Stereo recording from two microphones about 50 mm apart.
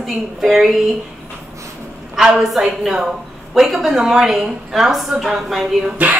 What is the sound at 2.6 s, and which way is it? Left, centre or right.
Speech, centre.